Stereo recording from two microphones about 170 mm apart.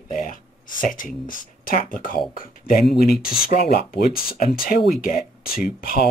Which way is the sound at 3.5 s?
50° left (ahead or behind).